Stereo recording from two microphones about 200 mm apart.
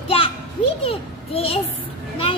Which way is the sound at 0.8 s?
30° left (ahead or behind).